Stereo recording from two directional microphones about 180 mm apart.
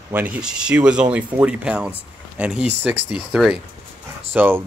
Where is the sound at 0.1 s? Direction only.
10° right (ahead or behind).